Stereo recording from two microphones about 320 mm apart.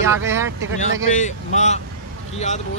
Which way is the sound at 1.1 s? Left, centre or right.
Left.